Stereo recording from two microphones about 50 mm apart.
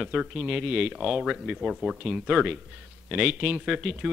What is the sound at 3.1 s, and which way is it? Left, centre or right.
Speech, centre.